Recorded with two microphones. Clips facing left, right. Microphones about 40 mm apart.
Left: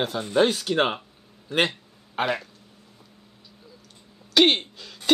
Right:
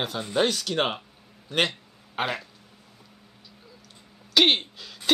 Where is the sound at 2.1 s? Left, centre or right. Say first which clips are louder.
Left 3 dB; centre.